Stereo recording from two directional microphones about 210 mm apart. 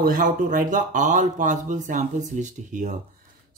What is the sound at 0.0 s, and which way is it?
Speech, 40° right (ahead or behind).